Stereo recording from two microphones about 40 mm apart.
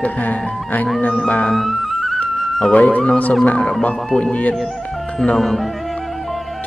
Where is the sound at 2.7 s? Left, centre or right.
Left.